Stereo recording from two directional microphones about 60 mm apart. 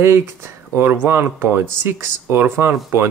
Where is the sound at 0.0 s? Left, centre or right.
Right.